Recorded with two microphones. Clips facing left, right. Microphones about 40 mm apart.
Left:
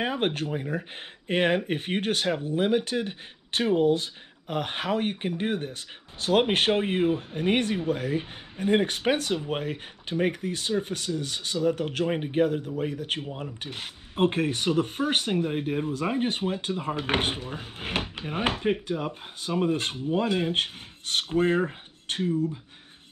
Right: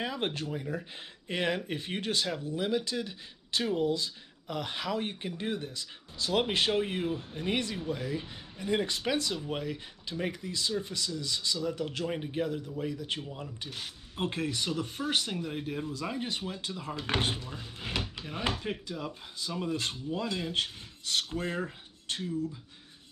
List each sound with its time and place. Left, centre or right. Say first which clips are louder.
0.0 s speech: left 6 dB; left